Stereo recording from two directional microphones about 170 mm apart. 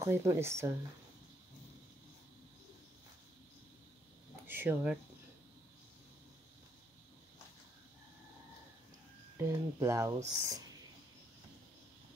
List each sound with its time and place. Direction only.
0.0 s speech: 15° right (ahead or behind)
4.5 s a sound: 10° right (ahead or behind)
9.4 s speech: 15° right (ahead or behind)